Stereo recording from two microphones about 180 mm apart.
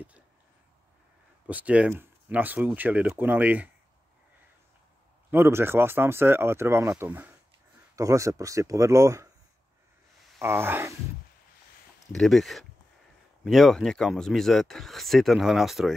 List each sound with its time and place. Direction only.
1.5 s speech: 5° right (ahead or behind)
5.3 s speech: 15° right (ahead or behind)
10.4 s speech: 15° right (ahead or behind)
12.1 s speech: centre (ahead or behind)